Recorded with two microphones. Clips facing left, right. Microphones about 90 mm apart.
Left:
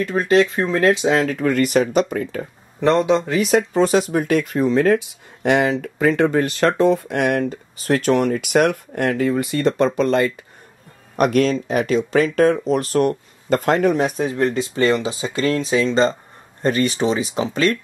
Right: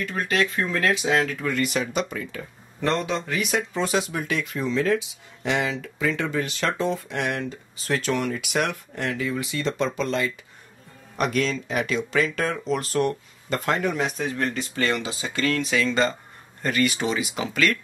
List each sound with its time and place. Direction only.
0.0 s speech: 35° left (ahead or behind)
1.3 s speech: 50° left (ahead or behind)
2.9 s a man's voice: 25° left (ahead or behind)
3.2 s speech: 35° left (ahead or behind)